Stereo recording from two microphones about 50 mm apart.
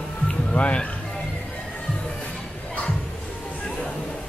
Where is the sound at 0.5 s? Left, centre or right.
Left.